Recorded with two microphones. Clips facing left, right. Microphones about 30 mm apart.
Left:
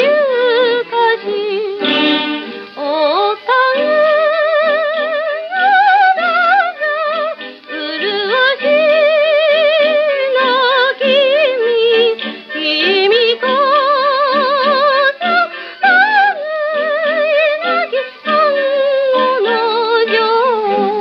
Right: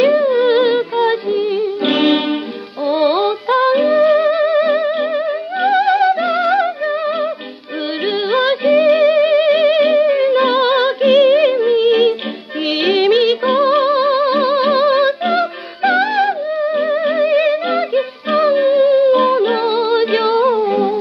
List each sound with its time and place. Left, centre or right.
0.0 s music: centre